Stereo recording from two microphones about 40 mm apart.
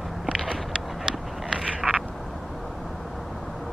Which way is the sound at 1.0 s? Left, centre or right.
Centre.